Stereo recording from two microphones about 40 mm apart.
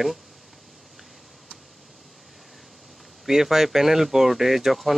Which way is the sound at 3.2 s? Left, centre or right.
Centre.